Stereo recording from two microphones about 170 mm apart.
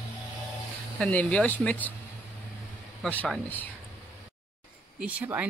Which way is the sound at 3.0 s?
5° left (ahead or behind).